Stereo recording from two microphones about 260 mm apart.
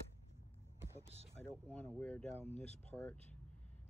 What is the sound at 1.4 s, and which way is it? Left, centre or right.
Speech, centre.